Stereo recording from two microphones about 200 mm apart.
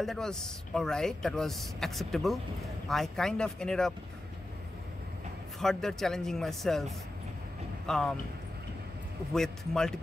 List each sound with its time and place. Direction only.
0.0 s speech: centre (ahead or behind)
5.6 s speech: centre (ahead or behind)
9.3 s speech: centre (ahead or behind)